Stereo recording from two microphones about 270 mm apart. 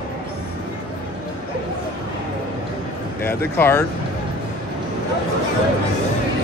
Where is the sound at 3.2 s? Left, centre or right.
Centre.